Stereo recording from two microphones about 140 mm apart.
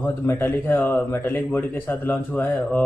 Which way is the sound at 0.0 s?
15° left (ahead or behind).